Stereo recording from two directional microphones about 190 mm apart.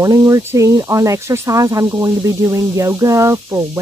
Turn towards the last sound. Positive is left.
turn(degrees=-15)  # may be behind; listen again after turning